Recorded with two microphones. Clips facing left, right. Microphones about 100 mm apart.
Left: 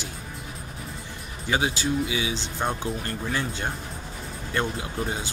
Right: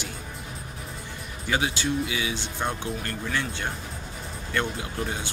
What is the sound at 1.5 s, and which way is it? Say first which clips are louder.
Speech: left 1 dB; 25° left (ahead or behind).